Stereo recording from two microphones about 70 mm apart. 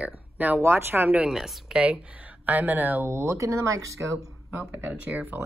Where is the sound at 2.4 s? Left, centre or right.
Right.